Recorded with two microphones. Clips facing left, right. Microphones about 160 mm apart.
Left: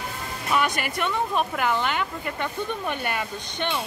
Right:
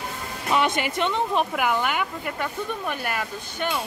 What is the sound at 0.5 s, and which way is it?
Speech, 25° right (ahead or behind).